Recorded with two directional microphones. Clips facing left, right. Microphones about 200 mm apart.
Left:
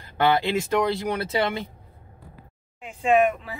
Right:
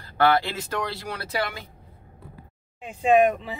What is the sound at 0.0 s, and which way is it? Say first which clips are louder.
Speech: even; 20° left (ahead or behind).